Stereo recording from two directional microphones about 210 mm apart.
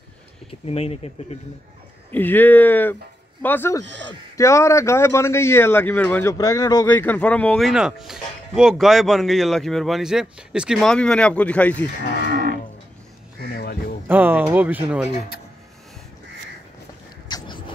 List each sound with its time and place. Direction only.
0.5 s speech: 30° left (ahead or behind)
2.0 s speech: 10° left (ahead or behind)
3.8 s a man's voice: 60° right (ahead or behind)
4.4 s speech: 15° left (ahead or behind)
13.5 s a sound: 45° left (ahead or behind)
14.0 s speech: 10° right (ahead or behind)
17.3 s a sound: 20° left (ahead or behind)